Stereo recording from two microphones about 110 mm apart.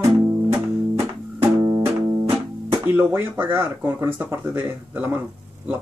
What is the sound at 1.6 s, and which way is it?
Music, 40° right (ahead or behind).